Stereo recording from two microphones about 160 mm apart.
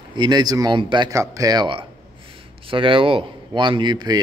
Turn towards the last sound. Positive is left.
turn(degrees=-25)  # may be behind; listen again after turning